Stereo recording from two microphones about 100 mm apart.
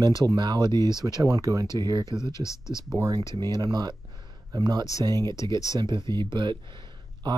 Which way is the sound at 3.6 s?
45° right (ahead or behind).